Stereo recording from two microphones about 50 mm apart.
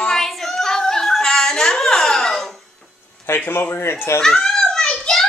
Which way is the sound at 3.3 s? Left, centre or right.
Left.